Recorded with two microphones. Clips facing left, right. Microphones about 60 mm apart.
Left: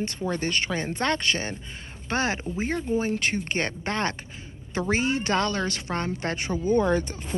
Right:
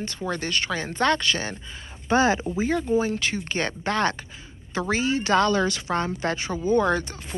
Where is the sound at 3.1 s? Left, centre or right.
Left.